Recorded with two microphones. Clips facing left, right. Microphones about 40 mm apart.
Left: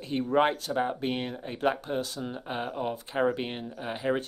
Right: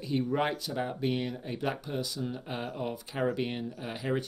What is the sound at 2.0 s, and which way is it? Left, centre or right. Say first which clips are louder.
Speech: left 2 dB; left.